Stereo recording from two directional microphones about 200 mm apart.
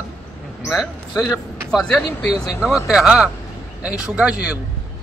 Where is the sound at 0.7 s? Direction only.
Centre (ahead or behind).